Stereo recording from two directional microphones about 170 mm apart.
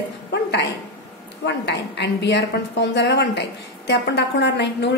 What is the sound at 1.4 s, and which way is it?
A woman's voice, 90° left.